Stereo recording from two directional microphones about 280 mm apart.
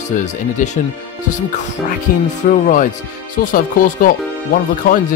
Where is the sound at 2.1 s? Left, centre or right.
Left.